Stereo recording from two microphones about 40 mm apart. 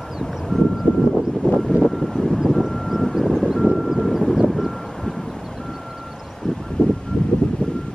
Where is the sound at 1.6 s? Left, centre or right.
Centre.